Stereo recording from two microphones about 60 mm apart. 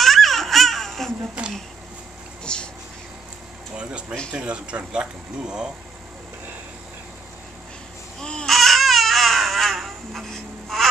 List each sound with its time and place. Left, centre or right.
0.0 s baby cry: centre
1.4 s speech: centre
2.4 s a sound: centre
3.7 s a sound: centre
4.3 s speech: centre
8.2 s babbling: centre
8.5 s baby cry: centre